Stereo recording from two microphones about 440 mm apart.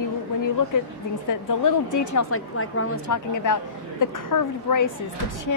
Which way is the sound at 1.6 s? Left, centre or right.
Left.